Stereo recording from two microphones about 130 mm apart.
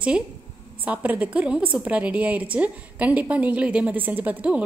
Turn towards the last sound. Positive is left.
turn(degrees=-10)  # may be behind; listen again after turning